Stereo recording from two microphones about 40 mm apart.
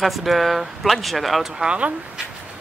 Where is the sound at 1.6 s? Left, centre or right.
Right.